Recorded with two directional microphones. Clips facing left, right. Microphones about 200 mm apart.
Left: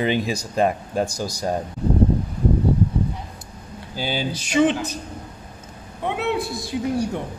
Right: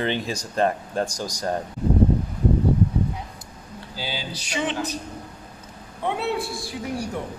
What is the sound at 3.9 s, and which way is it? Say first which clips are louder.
Speech: left 7 dB; 50° left (ahead or behind).